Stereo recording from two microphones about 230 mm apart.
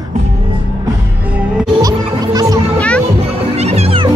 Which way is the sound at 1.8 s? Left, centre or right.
Centre.